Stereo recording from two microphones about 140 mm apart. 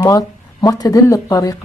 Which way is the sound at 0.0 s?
25° left (ahead or behind).